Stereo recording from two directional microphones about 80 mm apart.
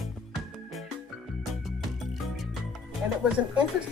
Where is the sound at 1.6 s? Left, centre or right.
Centre.